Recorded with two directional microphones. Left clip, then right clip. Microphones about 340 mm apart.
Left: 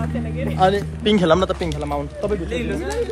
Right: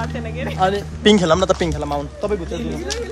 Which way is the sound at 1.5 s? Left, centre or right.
Centre.